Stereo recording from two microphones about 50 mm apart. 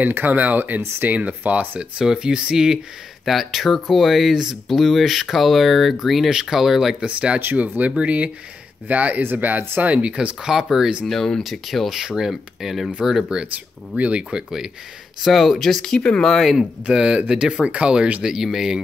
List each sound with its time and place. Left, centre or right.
0.1 s speech: right
1.8 s speech: centre
7.1 s speech: right
9.2 s speech: right
10.1 s speech: centre
11.1 s speech: centre
12.0 s speech: centre
12.3 s speech: centre
13.5 s speech: right
15.2 s speech: centre
16.8 s speech: right